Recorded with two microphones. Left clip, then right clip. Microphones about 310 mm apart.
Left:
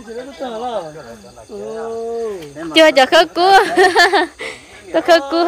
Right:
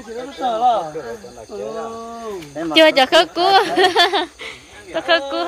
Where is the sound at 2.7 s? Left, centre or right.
Centre.